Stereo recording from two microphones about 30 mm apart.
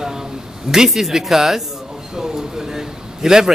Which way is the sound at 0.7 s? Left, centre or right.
Centre.